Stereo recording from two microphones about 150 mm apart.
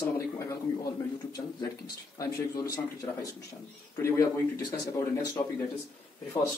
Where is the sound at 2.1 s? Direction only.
25° left (ahead or behind).